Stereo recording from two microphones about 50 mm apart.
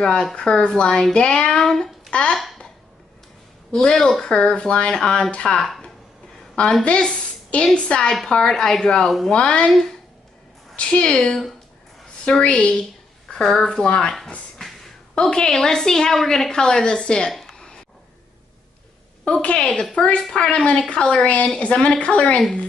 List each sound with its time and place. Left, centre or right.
0.0 s a woman's voice: centre
3.7 s a woman's voice: centre
6.8 s a woman's voice: left
10.8 s a woman's voice: left
11.1 s a woman's voice: centre
12.4 s a woman's voice: left
13.3 s a woman's voice: centre
15.1 s a woman's voice: centre
17.3 s a sound: centre
19.4 s a woman's voice: centre